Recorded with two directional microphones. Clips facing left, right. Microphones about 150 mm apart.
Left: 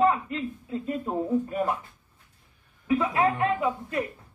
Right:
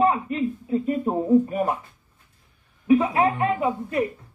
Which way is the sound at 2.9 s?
25° right (ahead or behind).